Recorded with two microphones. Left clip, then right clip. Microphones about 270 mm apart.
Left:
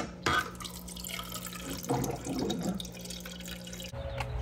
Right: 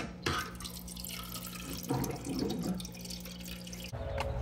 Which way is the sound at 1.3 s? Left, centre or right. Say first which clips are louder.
Left 3 dB; centre.